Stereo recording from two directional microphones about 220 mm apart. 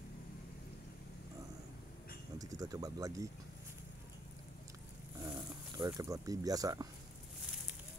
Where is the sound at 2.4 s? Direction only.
15° right (ahead or behind).